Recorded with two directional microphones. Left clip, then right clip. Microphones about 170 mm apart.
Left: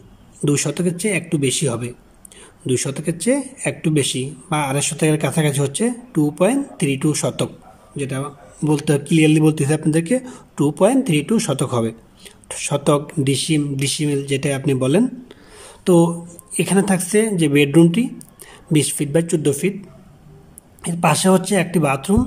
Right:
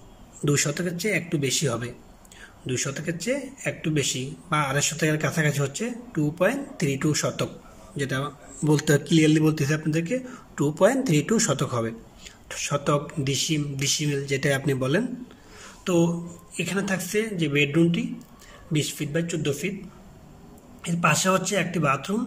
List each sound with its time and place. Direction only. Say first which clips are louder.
0.5 s speech: left 5 dB; 20° left (ahead or behind)
15.6 s a sound: left 8 dB; 25° left (ahead or behind)
16.5 s speech: left 9 dB; 30° left (ahead or behind)
20.8 s speech: left 5 dB; 30° left (ahead or behind)